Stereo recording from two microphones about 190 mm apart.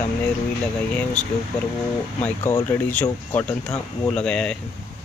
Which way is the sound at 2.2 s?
10° left (ahead or behind).